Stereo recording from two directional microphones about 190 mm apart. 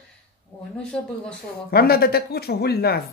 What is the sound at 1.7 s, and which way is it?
Speech, 55° left (ahead or behind).